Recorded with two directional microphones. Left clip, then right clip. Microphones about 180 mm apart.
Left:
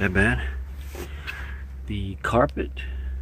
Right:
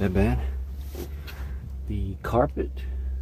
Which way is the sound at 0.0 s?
10° right (ahead or behind).